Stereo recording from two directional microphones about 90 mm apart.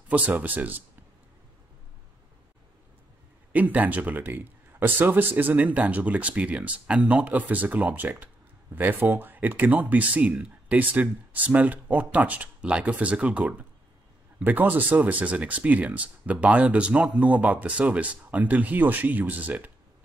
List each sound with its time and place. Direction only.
0.1 s speech: 15° right (ahead or behind)
3.5 s speech: 15° right (ahead or behind)